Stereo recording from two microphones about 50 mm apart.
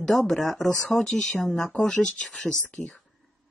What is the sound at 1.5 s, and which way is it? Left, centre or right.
Speech, left.